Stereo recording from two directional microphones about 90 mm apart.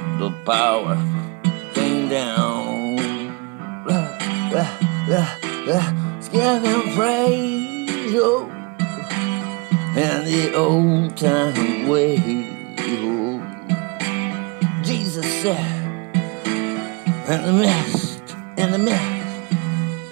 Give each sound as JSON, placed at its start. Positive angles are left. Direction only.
{"t": 0.0, "sound": "music", "side_deg": -35}
{"t": 17.3, "sound": "speech", "side_deg": -35}
{"t": 18.6, "sound": "music", "side_deg": -40}